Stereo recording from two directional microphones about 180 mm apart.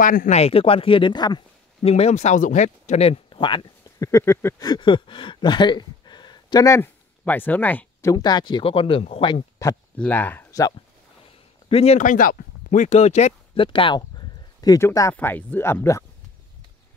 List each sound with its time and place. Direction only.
0.0 s speech: 50° left (ahead or behind)
0.4 s speech: 30° left (ahead or behind)
1.8 s speech: 35° left (ahead or behind)
9.9 s speech: 10° left (ahead or behind)
11.7 s speech: 35° left (ahead or behind)
13.7 s speech: 25° left (ahead or behind)